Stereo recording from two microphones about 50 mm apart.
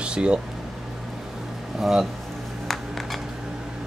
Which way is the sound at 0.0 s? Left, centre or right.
Right.